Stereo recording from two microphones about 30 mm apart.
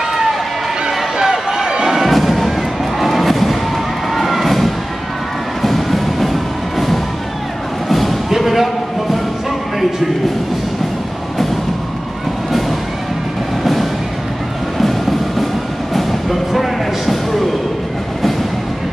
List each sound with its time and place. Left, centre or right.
0.1 s run: centre
1.2 s run: centre
1.9 s music: centre
7.9 s a sound: centre
14.8 s music: centre